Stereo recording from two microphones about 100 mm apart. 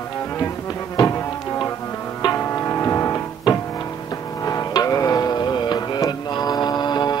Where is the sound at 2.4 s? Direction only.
30° left (ahead or behind).